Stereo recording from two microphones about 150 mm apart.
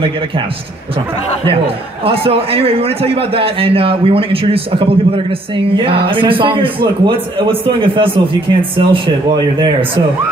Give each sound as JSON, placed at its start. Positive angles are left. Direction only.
{"t": 2.0, "sound": "a man's voice", "side_deg": -40}